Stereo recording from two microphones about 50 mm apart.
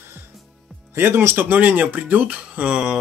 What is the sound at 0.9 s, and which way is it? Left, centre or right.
Speech, right.